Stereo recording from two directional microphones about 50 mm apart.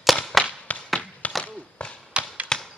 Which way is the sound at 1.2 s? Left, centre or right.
Left.